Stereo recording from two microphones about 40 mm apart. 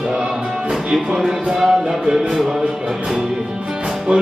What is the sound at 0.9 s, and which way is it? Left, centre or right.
Speech, centre.